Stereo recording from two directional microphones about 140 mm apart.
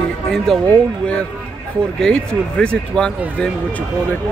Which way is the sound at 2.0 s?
5° left (ahead or behind).